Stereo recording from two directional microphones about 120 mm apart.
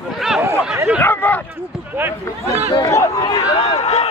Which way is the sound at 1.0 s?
15° left (ahead or behind).